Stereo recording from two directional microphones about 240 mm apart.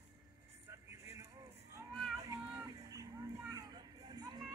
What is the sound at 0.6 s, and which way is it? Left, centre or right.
Music, centre.